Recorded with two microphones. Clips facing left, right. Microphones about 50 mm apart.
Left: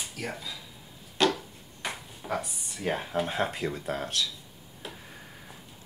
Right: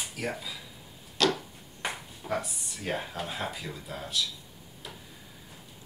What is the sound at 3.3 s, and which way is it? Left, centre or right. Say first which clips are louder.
Speech: left 6 dB; left.